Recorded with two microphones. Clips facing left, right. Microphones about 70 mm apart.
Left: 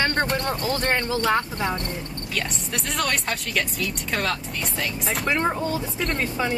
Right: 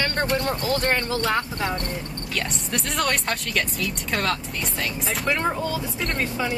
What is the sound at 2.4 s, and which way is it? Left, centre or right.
Speech, centre.